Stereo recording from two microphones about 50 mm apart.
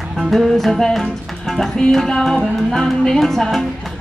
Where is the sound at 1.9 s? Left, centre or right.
Centre.